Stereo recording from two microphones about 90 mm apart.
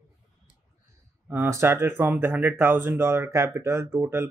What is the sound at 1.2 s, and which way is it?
Speech, 20° right (ahead or behind).